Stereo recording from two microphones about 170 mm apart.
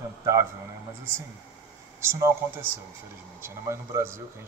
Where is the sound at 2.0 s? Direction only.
15° right (ahead or behind).